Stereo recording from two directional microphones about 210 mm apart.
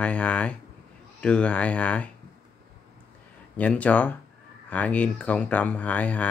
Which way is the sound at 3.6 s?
5° left (ahead or behind).